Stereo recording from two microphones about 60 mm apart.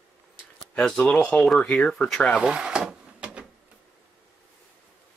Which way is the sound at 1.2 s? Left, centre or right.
Centre.